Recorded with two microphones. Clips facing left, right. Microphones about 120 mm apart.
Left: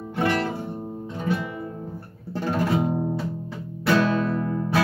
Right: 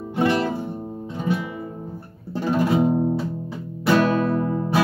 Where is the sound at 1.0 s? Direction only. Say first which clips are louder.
Right 2 dB; 15° right (ahead or behind).